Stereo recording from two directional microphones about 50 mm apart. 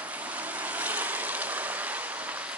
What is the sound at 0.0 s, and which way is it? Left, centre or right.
Boat, right.